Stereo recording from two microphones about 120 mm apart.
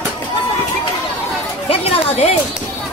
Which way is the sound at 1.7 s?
55° left (ahead or behind).